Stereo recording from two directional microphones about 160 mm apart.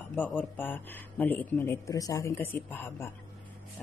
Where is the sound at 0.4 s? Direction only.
10° left (ahead or behind).